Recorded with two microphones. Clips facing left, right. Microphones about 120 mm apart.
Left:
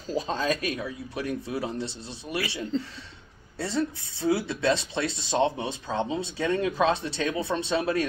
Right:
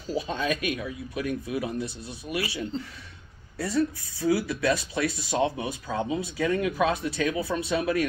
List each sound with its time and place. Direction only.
0.3 s speech: 35° left (ahead or behind)
3.5 s speech: 25° left (ahead or behind)